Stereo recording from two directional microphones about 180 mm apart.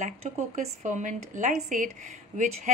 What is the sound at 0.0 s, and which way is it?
A woman's voice, 40° right (ahead or behind).